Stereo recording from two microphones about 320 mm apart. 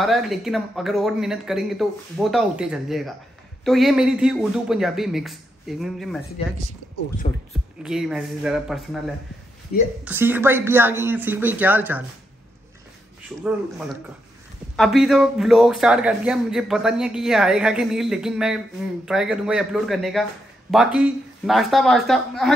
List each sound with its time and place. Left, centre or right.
0.0 s a man's voice: centre
7.2 s speech: left
7.8 s a man's voice: centre
9.7 s speech: left
10.0 s a man's voice: centre
13.3 s a man's voice: centre
14.8 s a man's voice: centre